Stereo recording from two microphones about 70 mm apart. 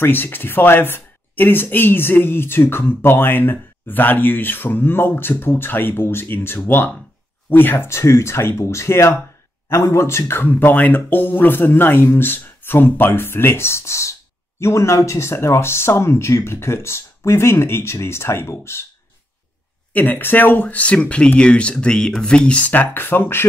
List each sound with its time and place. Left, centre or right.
0.0 s speech: left
19.9 s speech: left